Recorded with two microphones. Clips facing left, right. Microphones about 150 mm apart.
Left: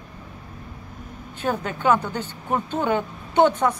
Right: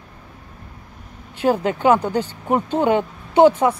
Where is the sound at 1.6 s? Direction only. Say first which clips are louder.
Right 2 dB; 20° right (ahead or behind).